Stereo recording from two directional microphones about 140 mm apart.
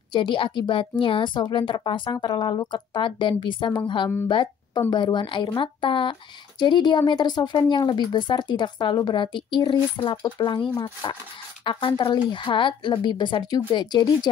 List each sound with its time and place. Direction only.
0.1 s a woman's voice: 35° left (ahead or behind)